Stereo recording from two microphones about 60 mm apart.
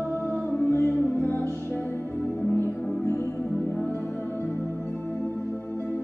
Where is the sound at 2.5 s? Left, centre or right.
Left.